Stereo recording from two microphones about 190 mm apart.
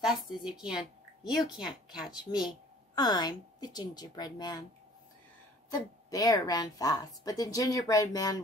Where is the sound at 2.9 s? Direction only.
20° left (ahead or behind).